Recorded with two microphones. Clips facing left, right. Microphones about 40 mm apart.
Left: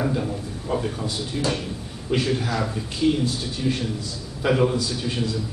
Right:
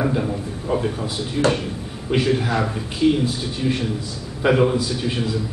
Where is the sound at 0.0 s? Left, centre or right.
Centre.